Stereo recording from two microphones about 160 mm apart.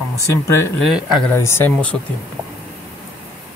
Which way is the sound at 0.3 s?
15° left (ahead or behind).